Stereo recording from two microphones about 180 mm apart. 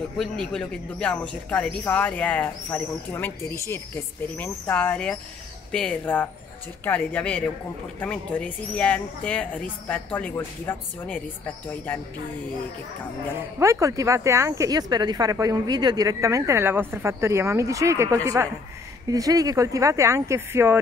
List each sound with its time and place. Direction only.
0.2 s a man's voice: 5° left (ahead or behind)
13.6 s speech: 15° right (ahead or behind)